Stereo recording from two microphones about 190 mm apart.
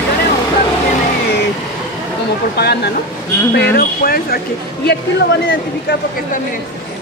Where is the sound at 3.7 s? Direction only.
50° left (ahead or behind).